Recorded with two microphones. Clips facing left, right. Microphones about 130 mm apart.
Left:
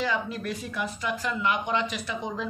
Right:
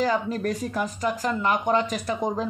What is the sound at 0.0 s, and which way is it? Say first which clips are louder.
Speech: right 5 dB; 40° right (ahead or behind).